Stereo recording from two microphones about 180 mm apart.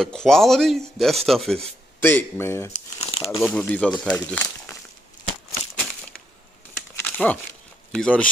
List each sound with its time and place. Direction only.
0.0 s speech: 5° left (ahead or behind)
2.0 s speech: 10° left (ahead or behind)
2.7 s crumpling: 35° left (ahead or behind)
3.4 s speech: 5° left (ahead or behind)
7.0 s a sound: 5° left (ahead or behind)
7.9 s speech: 5° left (ahead or behind)